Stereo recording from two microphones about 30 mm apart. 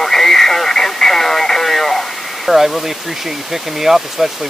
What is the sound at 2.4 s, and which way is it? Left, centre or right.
Speech, centre.